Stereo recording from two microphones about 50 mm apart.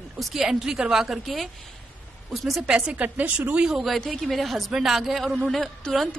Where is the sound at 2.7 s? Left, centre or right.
Right.